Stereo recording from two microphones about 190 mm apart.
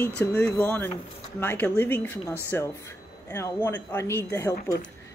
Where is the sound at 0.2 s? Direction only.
5° left (ahead or behind).